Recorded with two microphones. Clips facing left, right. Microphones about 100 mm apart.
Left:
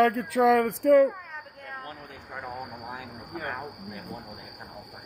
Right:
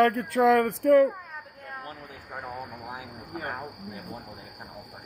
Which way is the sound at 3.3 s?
35° right (ahead or behind).